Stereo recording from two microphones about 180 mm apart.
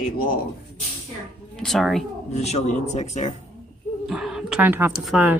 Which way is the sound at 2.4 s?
40° left (ahead or behind).